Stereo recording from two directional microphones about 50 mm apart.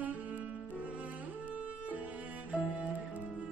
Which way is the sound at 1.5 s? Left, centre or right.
Right.